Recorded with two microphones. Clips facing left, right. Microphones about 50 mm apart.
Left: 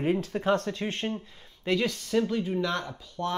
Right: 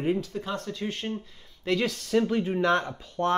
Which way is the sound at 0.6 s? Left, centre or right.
Left.